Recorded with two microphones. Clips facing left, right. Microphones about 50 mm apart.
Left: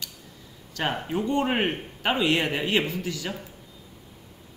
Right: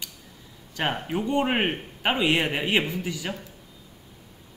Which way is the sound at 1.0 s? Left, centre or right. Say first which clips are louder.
Even; centre.